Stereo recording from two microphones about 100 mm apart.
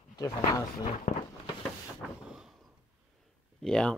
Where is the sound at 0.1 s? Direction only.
40° left (ahead or behind).